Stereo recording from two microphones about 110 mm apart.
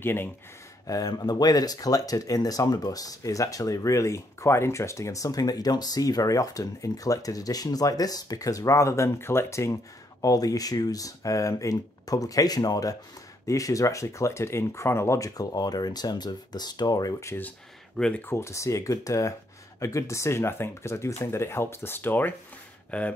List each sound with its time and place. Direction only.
0.0 s speech: 20° left (ahead or behind)
0.8 s speech: 35° left (ahead or behind)
17.4 s speech: 10° left (ahead or behind)
18.2 s speech: 25° left (ahead or behind)